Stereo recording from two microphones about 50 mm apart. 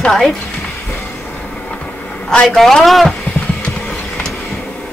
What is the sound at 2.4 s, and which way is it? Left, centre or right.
Speech, centre.